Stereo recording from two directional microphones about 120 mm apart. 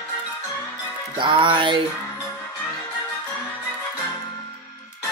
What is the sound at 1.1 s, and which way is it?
Speech, 45° right (ahead or behind).